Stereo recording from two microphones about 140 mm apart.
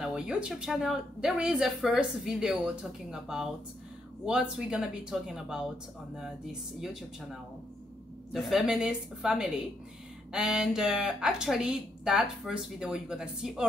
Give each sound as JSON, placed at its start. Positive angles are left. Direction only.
{"t": 0.0, "sound": "speech", "side_deg": -5}
{"t": 8.3, "sound": "speech", "side_deg": 0}